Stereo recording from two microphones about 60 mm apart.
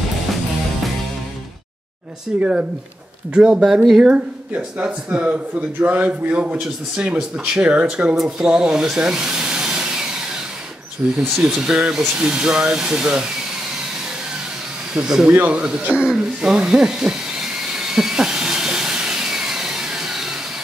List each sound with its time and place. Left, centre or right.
2.3 s a man's voice: centre
11.0 s a man's voice: right
11.4 s speech: centre
15.0 s speech: centre
15.3 s a man's voice: right
15.6 s hiss: centre